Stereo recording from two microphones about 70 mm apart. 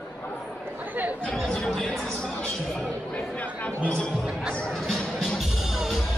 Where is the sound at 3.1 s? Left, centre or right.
Left.